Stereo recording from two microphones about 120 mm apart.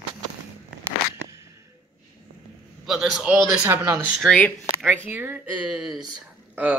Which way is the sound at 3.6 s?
20° right (ahead or behind).